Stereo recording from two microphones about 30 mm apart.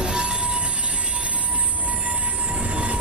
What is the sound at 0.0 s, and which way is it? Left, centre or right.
Train, right.